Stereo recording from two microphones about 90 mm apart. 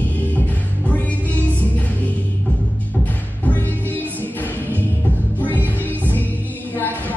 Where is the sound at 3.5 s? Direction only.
20° left (ahead or behind).